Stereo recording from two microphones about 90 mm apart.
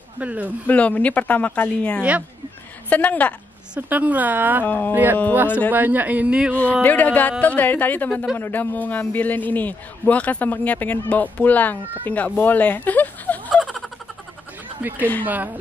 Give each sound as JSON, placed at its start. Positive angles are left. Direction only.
{"t": 0.2, "sound": "speech", "side_deg": -15}
{"t": 0.7, "sound": "speech", "side_deg": 15}
{"t": 3.7, "sound": "a woman's voice", "side_deg": -15}
{"t": 4.6, "sound": "a man's voice", "side_deg": 20}
{"t": 4.9, "sound": "a woman's voice", "side_deg": -20}
{"t": 6.5, "sound": "a man's voice", "side_deg": 15}
{"t": 12.4, "sound": "a sound", "side_deg": 20}
{"t": 13.6, "sound": "a sound", "side_deg": 5}
{"t": 14.8, "sound": "a woman's voice", "side_deg": -20}